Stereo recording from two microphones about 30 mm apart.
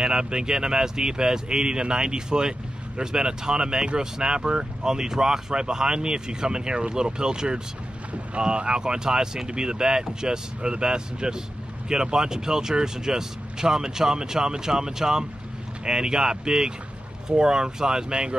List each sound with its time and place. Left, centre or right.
0.0 s speech: right